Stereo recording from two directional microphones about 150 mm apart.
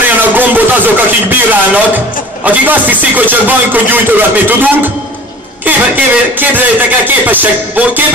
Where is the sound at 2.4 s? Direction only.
10° right (ahead or behind).